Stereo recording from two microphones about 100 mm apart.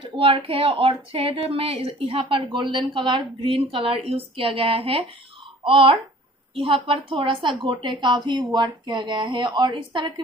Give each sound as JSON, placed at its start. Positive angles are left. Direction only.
{"t": 0.2, "sound": "a woman's voice", "side_deg": -65}